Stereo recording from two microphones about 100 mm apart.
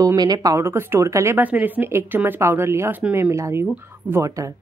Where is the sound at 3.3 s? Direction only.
30° right (ahead or behind).